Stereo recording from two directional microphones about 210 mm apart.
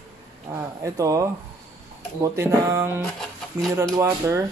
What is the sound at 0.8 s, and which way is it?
Speech, 15° right (ahead or behind).